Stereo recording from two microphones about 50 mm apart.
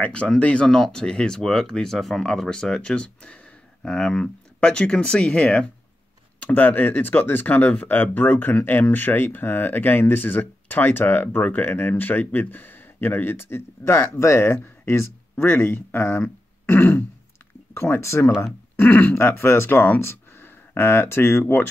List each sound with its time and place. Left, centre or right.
0.0 s speech: left
6.4 s speech: left
14.1 s speech: left
16.6 s throat clearing: left
18.0 s speech: left
18.8 s speech: left
19.1 s speech: left